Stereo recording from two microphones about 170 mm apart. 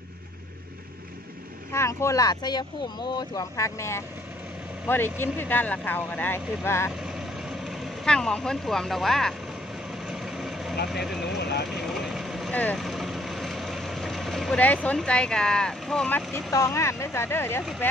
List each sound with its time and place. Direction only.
1.7 s speech: 15° left (ahead or behind)
7.6 s speech: centre (ahead or behind)
10.0 s vehicle: centre (ahead or behind)
11.3 s speech: 75° left (ahead or behind)
11.7 s vehicle: centre (ahead or behind)
16.5 s speech: 15° left (ahead or behind)